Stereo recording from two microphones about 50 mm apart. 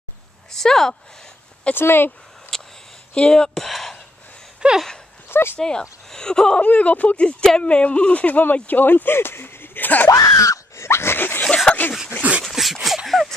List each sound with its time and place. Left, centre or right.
0.5 s speech: centre
1.7 s speech: left
2.5 s speech: centre
4.6 s a sound: centre
5.3 s speech: left
5.6 s speech: centre
6.6 s speech: left
10.3 s a sound: left
11.1 s dog: left
11.4 s dog: centre
12.2 s dog: right
12.4 s dog: centre
12.8 s a sound: centre